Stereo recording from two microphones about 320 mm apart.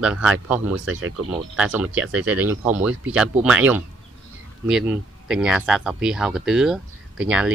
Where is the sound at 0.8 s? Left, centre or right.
Right.